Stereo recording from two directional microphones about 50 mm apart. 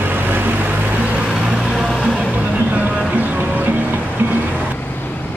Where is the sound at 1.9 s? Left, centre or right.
Centre.